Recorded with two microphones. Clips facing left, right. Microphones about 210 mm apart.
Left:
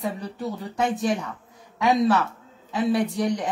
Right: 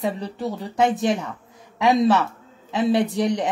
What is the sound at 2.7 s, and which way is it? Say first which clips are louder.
Speech: right 3 dB; 25° right (ahead or behind).